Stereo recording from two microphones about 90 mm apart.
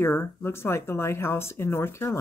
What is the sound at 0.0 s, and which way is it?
Speech, 25° left (ahead or behind).